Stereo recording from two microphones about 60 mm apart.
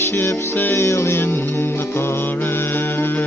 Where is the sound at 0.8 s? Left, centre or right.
Left.